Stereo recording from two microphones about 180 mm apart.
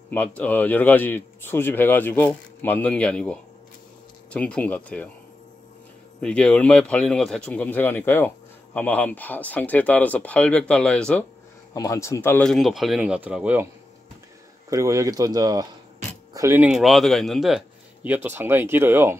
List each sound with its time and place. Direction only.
0.1 s a man's voice: 10° left (ahead or behind)
6.2 s a man's voice: 5° left (ahead or behind)
11.7 s speech: 20° left (ahead or behind); by 13.7 s 10° right (ahead or behind)
14.7 s speech: 15° right (ahead or behind)